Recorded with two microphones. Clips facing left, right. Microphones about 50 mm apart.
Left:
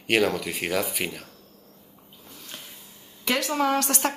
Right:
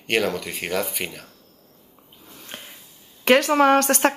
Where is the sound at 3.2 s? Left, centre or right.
Right.